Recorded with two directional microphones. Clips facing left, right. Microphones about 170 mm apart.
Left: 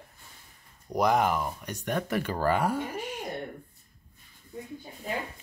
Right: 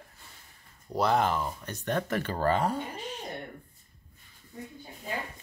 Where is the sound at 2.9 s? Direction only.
10° left (ahead or behind).